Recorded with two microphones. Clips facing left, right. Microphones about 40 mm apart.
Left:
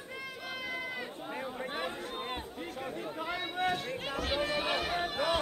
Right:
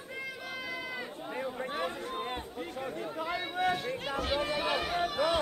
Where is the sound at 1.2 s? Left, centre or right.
Centre.